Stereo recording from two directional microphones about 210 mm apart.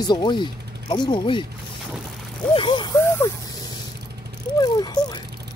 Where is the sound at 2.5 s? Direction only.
20° left (ahead or behind).